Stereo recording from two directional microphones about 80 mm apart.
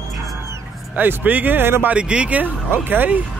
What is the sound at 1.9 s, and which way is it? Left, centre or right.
Speech, centre.